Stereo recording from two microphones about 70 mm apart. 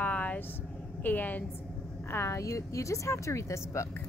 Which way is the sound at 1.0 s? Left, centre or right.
Left.